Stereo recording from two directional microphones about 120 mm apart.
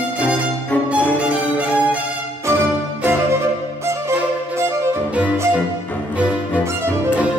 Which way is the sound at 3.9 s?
20° right (ahead or behind).